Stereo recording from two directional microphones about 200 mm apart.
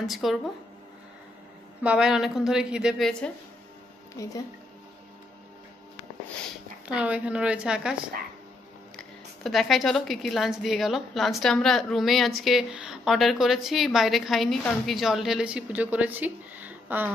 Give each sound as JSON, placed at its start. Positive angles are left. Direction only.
{"t": 0.0, "sound": "a woman's voice", "side_deg": 0}
{"t": 1.8, "sound": "a woman's voice", "side_deg": -5}
{"t": 4.1, "sound": "speech", "side_deg": 15}
{"t": 6.9, "sound": "a woman's voice", "side_deg": -5}
{"t": 8.9, "sound": "a woman's voice", "side_deg": 0}